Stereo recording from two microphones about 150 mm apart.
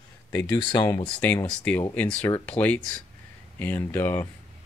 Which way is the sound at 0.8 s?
15° left (ahead or behind).